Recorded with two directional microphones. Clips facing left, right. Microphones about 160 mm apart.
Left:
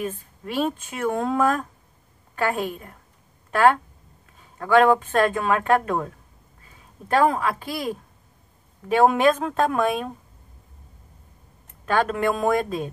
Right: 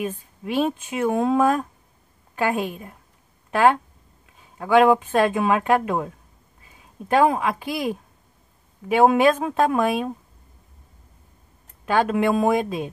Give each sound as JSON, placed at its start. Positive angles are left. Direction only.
{"t": 0.0, "sound": "speech", "side_deg": -15}
{"t": 4.6, "sound": "speech", "side_deg": -10}
{"t": 11.8, "sound": "speech", "side_deg": -10}